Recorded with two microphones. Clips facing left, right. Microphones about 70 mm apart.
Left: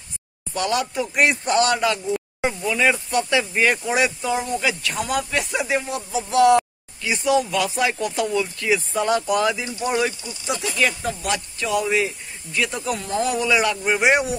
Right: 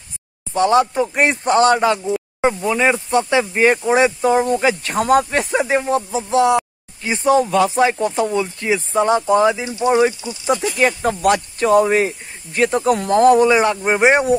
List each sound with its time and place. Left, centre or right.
0.5 s speech: right
10.2 s speech: right